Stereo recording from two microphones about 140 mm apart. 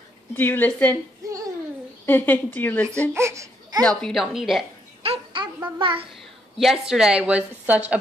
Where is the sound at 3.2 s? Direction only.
20° right (ahead or behind).